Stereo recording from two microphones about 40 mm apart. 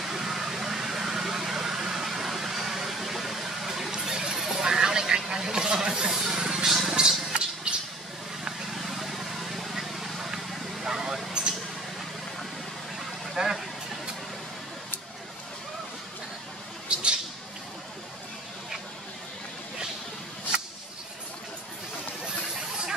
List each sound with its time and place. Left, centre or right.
0.0 s vehicle: centre
3.9 s a sound: centre
7.0 s music: centre
8.7 s vehicle: centre
13.4 s vehicle: centre
16.9 s a sound: right